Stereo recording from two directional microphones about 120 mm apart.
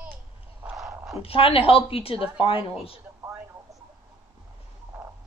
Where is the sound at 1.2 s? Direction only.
55° left (ahead or behind).